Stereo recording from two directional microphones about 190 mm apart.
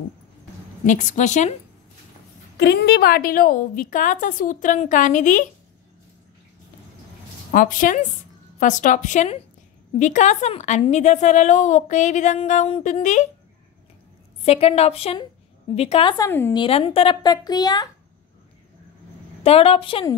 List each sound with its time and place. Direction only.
0.8 s a woman's voice: 40° left (ahead or behind)
2.5 s a woman's voice: 65° left (ahead or behind); by 5.5 s 45° left (ahead or behind)
7.5 s a woman's voice: 45° left (ahead or behind)
14.4 s a woman's voice: 30° left (ahead or behind)
16.3 s a woman's voice: 10° left (ahead or behind)
16.5 s speech: 25° left (ahead or behind)
19.4 s speech: 30° left (ahead or behind)